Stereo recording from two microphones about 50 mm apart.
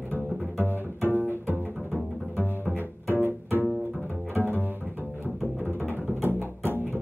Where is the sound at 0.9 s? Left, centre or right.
Left.